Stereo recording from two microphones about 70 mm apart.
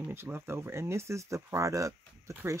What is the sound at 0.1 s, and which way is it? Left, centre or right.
Speech, right.